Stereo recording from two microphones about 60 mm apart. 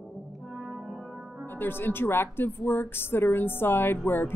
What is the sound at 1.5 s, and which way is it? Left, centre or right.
Speech, left.